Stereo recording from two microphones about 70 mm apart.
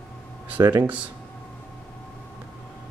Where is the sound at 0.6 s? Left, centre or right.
Right.